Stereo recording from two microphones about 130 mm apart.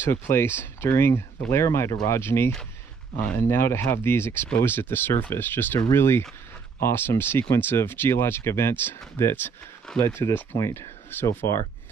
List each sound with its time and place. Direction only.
0.0 s speech: 20° left (ahead or behind)